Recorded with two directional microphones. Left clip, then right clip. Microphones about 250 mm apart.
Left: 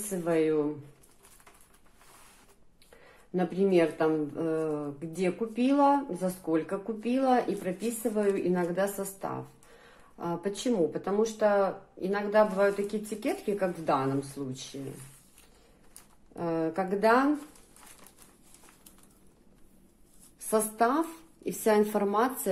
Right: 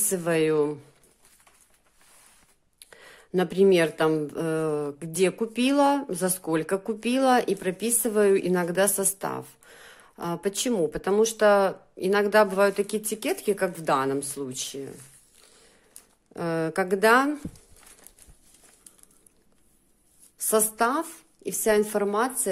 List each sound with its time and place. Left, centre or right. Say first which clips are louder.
0.2 s speech: right 3 dB; right
3.3 s speech: right 5 dB; right
16.3 s speech: right 4 dB; right
20.4 s a woman's voice: right 3 dB; right